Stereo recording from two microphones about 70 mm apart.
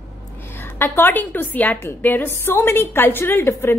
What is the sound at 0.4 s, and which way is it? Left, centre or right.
A woman's voice, left.